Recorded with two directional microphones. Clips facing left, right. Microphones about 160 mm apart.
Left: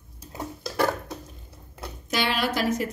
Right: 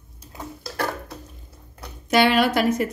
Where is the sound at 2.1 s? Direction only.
60° right (ahead or behind).